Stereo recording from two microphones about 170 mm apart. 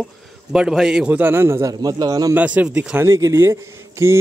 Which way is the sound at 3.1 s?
15° right (ahead or behind).